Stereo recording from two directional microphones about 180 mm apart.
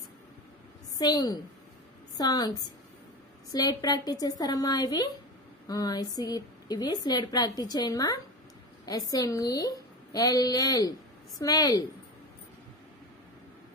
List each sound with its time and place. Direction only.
0.9 s a woman's voice: 20° left (ahead or behind)
3.5 s a woman's voice: 20° left (ahead or behind)